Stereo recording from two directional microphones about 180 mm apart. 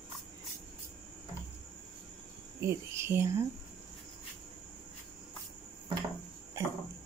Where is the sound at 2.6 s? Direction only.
15° right (ahead or behind).